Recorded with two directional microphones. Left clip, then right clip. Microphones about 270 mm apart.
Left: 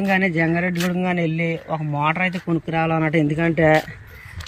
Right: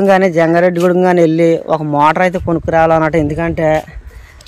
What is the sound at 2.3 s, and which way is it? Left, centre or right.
Speech, centre.